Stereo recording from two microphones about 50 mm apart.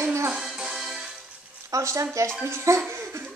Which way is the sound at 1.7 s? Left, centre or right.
Right.